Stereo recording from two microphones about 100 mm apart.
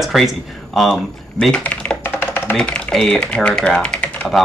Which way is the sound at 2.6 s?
5° left (ahead or behind).